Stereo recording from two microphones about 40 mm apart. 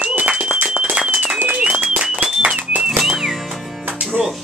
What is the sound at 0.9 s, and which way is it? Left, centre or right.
Applause, right.